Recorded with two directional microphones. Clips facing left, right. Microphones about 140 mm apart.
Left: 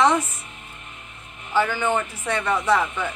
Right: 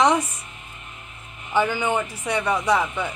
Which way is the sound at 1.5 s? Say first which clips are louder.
Even; 15° right (ahead or behind).